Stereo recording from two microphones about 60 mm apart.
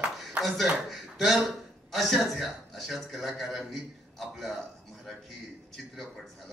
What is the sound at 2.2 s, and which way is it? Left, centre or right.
A man's voice, centre.